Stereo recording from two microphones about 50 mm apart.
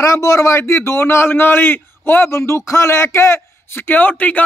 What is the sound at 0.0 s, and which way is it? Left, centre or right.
A man's voice, left.